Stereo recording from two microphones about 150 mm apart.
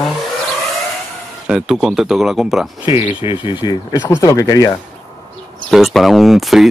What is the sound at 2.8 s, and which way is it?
Speech, 40° left (ahead or behind).